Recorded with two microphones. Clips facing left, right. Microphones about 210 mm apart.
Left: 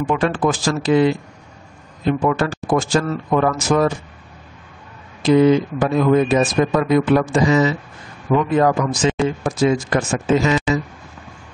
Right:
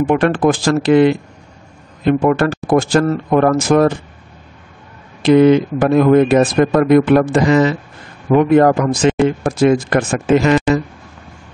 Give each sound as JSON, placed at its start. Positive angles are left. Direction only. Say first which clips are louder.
{"t": 0.0, "sound": "speech", "louder": "right 5 dB", "side_deg": -60}
{"t": 5.2, "sound": "speech", "louder": "right 4 dB", "side_deg": -65}